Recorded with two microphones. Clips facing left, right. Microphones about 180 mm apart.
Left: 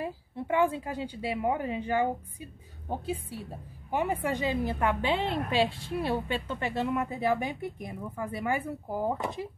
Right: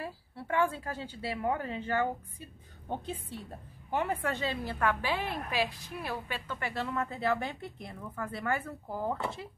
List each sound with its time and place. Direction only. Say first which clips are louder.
0.0 s a woman's voice: left 6 dB; 20° left (ahead or behind)